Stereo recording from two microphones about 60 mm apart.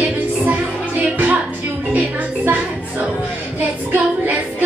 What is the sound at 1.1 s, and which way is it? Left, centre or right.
Music, right.